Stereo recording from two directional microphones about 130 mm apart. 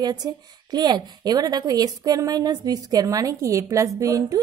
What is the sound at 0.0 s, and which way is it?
A woman's voice, 30° right (ahead or behind).